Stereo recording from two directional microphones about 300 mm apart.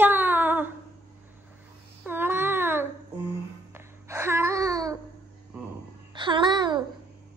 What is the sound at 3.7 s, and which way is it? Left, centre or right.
Babbling, centre.